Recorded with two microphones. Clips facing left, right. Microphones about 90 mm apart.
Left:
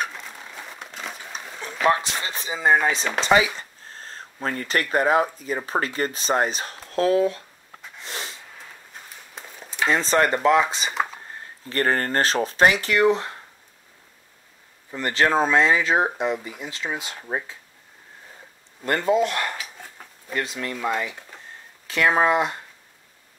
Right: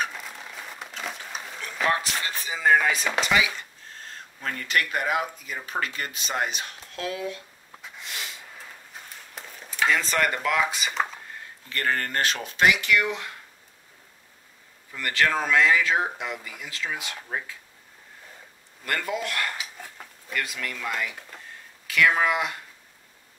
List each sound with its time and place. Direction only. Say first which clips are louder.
0.0 s a sound: left 1 dB; centre (ahead or behind)
1.9 s speech: left 5 dB; 20° left (ahead or behind)
8.0 s snort: left 3 dB; 35° left (ahead or behind)
9.8 s speech: left 4 dB; 30° left (ahead or behind)
14.9 s speech: left 3 dB; 30° left (ahead or behind)
18.9 s speech: left 8 dB; 25° left (ahead or behind)